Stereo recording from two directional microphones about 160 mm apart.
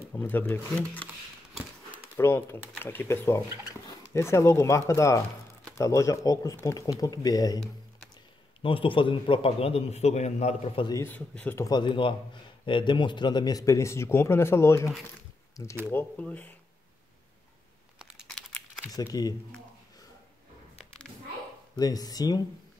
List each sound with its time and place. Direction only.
0.1 s speech: 10° left (ahead or behind)
2.1 s speech: 15° left (ahead or behind)
8.6 s a man's voice: 35° left (ahead or behind)
10.8 s speech: 25° left (ahead or behind)
11.1 s speech: 10° left (ahead or behind)
17.9 s computer keyboard: centre (ahead or behind)
18.9 s speech: 25° left (ahead or behind)
21.7 s speech: 25° left (ahead or behind)